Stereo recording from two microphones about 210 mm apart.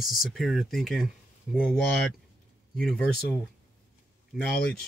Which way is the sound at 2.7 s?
5° left (ahead or behind).